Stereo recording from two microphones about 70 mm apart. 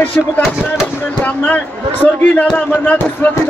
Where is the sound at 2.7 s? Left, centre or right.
Left.